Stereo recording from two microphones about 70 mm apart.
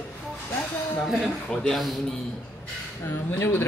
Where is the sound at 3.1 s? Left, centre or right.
Left.